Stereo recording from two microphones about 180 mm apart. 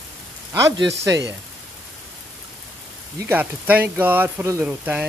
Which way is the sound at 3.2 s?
10° right (ahead or behind).